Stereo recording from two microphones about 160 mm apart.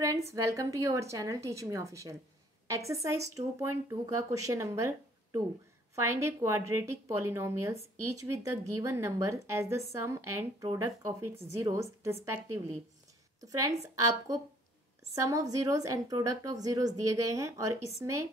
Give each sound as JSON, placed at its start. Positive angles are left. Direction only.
{"t": 0.3, "sound": "a woman's voice", "side_deg": -20}